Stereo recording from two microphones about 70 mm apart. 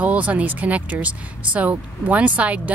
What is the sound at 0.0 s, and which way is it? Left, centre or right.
Speech, centre.